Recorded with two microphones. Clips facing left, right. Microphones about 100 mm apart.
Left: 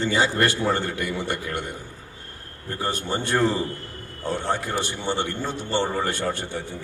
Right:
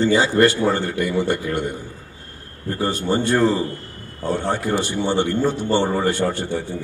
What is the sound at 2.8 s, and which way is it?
A man's voice, 20° right (ahead or behind).